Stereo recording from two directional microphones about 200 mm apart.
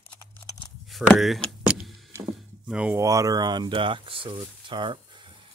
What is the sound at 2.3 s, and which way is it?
Speech, 5° right (ahead or behind).